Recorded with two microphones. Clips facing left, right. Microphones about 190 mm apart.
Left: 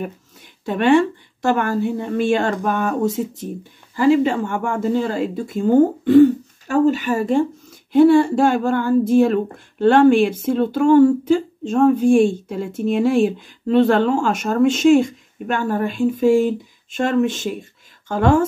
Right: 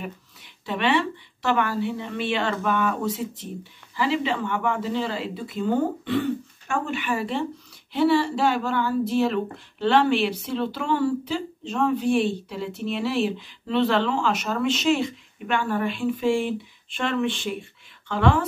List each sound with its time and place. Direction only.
0.7 s speech: 45° left (ahead or behind)